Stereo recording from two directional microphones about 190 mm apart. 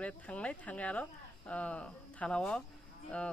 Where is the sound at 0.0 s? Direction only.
5° left (ahead or behind).